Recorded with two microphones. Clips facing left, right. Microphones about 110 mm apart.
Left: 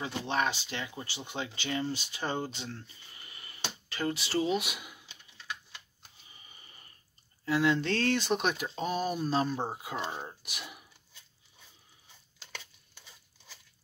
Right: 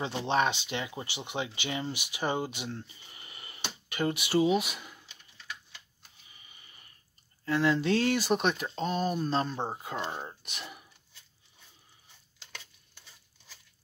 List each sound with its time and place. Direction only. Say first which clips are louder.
0.0 s speech: right 3 dB; 20° right (ahead or behind)
4.5 s speech: right 4 dB; centre (ahead or behind)
6.3 s a sound: left 1 dB; 35° left (ahead or behind)
7.4 s speech: right 1 dB; centre (ahead or behind)